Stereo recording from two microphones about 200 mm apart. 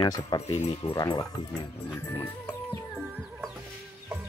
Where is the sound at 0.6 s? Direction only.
25° left (ahead or behind).